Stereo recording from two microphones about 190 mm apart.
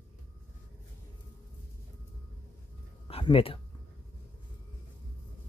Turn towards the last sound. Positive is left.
turn(degrees=30)  # may be behind; listen again after turning